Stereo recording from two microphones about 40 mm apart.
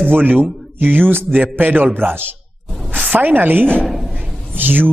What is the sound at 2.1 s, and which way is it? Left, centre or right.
Speech, right.